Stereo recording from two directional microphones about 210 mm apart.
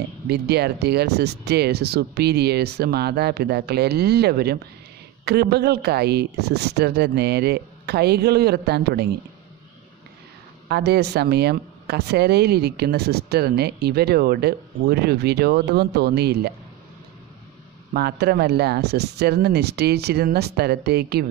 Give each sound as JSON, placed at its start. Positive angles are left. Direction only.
{"t": 0.3, "sound": "speech", "side_deg": -50}
{"t": 10.7, "sound": "speech", "side_deg": -50}
{"t": 17.9, "sound": "speech", "side_deg": -50}